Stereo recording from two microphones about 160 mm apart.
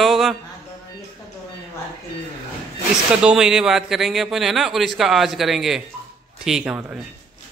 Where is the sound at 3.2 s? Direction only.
5° right (ahead or behind).